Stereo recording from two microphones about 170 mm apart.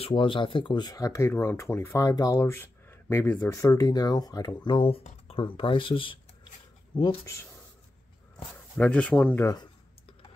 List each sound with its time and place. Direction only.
0.0 s speech: 30° left (ahead or behind)
8.7 s speech: 5° left (ahead or behind)